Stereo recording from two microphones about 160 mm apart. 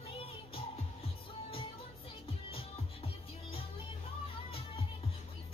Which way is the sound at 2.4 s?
35° left (ahead or behind).